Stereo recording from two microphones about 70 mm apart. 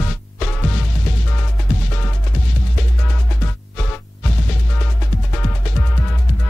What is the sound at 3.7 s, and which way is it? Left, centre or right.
Music, centre.